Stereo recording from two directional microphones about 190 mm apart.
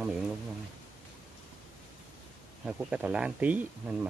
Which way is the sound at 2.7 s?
5° right (ahead or behind).